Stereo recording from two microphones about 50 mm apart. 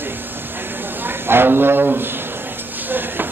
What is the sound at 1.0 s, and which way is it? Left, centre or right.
Speech, right.